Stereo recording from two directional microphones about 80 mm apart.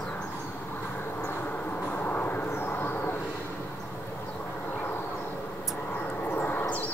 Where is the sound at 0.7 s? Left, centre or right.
Left.